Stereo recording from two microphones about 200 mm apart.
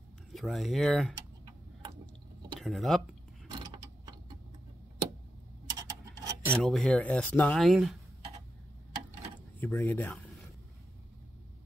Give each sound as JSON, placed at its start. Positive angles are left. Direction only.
{"t": 0.3, "sound": "speech", "side_deg": 0}
{"t": 2.6, "sound": "speech", "side_deg": 0}
{"t": 3.4, "sound": "mechanisms", "side_deg": -20}
{"t": 5.7, "sound": "a sound", "side_deg": -15}
{"t": 6.5, "sound": "speech", "side_deg": 5}
{"t": 9.6, "sound": "speech", "side_deg": 10}